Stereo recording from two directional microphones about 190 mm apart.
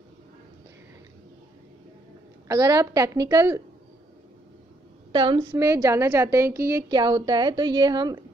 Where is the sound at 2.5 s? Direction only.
20° right (ahead or behind).